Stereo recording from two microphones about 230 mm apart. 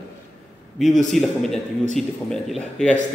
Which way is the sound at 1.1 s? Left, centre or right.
Centre.